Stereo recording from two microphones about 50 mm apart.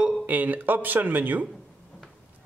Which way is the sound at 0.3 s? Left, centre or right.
Right.